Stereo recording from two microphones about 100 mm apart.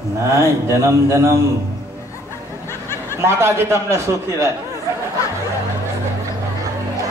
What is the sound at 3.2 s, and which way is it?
A man's voice, 25° right (ahead or behind).